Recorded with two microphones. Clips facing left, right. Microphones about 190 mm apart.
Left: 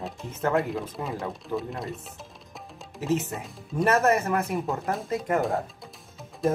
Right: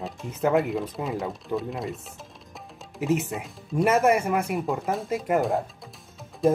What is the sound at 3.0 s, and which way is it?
Speech, 15° right (ahead or behind).